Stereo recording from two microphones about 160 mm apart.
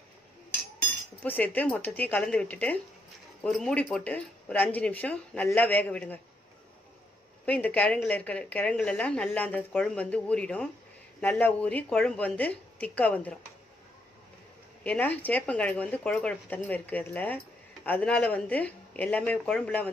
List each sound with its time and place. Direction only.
1.2 s speech: 10° left (ahead or behind)
7.4 s speech: 10° left (ahead or behind)
14.8 s speech: 10° left (ahead or behind)